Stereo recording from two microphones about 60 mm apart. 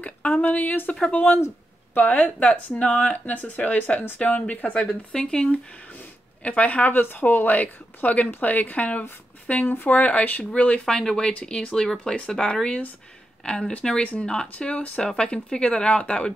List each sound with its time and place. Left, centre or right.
0.0 s speech: left
5.1 s speech: centre
5.9 s speech: left
10.9 s speech: centre